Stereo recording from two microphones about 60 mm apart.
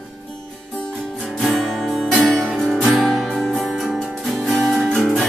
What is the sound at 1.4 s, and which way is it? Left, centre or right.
Music, centre.